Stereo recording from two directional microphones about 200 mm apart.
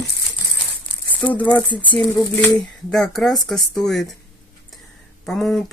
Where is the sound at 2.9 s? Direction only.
Centre (ahead or behind).